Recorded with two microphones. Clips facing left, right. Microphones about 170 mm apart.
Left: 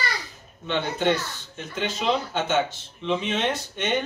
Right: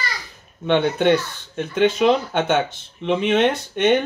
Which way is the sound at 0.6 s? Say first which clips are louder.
Right 7 dB; 60° right (ahead or behind).